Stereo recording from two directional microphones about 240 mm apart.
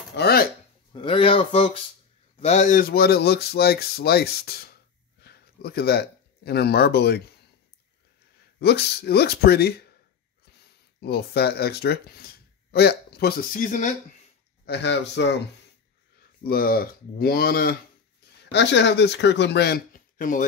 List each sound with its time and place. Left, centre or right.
0.1 s speech: left
0.9 s speech: left
8.5 s speech: left
14.7 s speech: left
16.4 s speech: left